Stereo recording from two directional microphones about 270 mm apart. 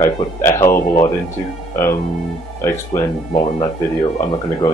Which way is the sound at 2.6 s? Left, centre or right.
Centre.